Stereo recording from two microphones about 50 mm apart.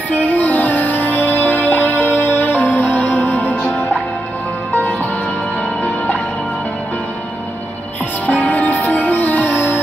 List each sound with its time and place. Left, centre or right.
0.2 s music: left
8.3 s music: left